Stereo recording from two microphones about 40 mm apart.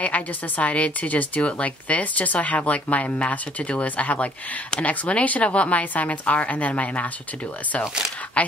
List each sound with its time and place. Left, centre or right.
0.0 s a woman's voice: left
8.4 s speech: left